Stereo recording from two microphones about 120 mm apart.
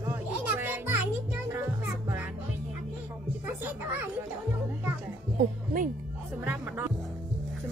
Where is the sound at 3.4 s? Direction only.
20° right (ahead or behind).